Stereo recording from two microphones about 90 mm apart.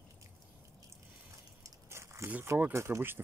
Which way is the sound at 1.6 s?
30° right (ahead or behind).